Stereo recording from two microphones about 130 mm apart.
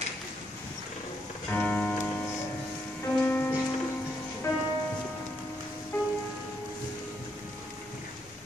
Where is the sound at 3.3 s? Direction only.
15° left (ahead or behind).